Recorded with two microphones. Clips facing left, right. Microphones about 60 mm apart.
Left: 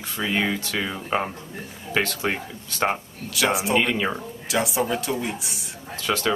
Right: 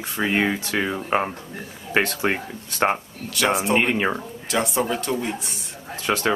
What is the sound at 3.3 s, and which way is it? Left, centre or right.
Speech, centre.